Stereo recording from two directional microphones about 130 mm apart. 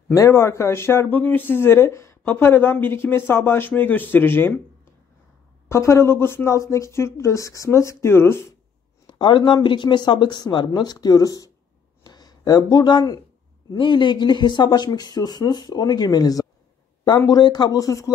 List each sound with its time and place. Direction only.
0.1 s speech: 25° left (ahead or behind)
5.7 s speech: 20° left (ahead or behind)
9.0 s speech: 35° left (ahead or behind)